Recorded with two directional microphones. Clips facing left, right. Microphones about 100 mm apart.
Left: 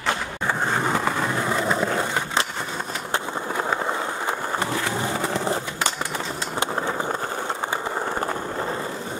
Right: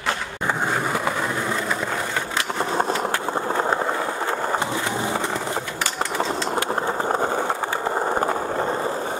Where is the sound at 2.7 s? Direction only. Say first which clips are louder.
Right 9 dB; 40° right (ahead or behind).